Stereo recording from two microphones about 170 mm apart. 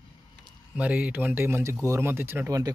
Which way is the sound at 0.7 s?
10° right (ahead or behind).